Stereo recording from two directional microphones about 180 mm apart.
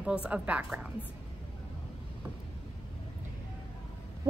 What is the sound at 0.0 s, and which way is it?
Speech, 5° right (ahead or behind).